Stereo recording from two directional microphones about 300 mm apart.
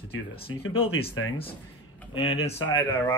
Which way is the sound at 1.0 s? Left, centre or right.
Left.